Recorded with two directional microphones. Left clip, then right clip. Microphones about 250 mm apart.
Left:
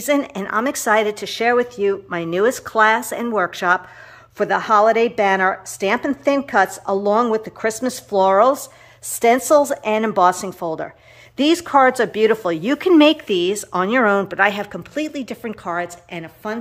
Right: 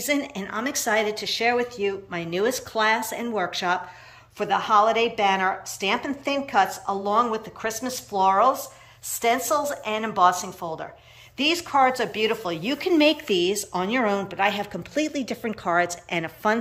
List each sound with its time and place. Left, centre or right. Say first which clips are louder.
0.0 s a woman's voice: left 7 dB; centre